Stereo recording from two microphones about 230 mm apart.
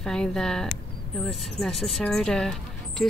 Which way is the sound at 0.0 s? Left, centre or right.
Centre.